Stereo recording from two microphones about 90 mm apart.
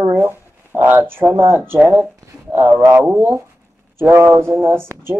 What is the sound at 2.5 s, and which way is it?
Speech, 30° right (ahead or behind).